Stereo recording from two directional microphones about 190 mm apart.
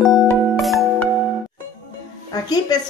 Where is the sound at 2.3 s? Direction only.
20° left (ahead or behind).